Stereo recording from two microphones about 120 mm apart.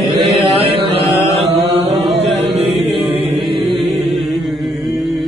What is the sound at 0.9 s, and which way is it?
Mantra, 60° right (ahead or behind).